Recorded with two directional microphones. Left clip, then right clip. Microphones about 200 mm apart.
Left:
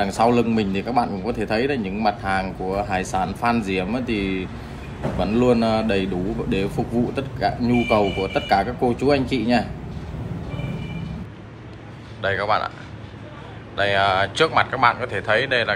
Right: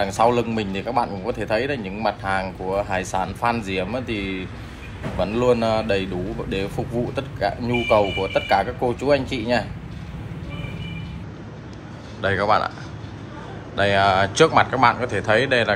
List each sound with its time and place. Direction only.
0.0 s a man's voice: 10° left (ahead or behind)
12.2 s speech: 15° right (ahead or behind)
13.7 s speech: 15° right (ahead or behind)